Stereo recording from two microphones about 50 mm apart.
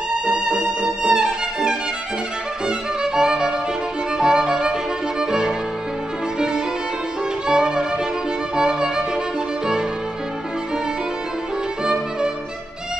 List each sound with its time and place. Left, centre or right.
0.3 s music: centre
2.6 s violin: centre
4.2 s music: centre
5.2 s violin: centre
7.4 s music: centre
8.5 s violin: centre
11.8 s music: centre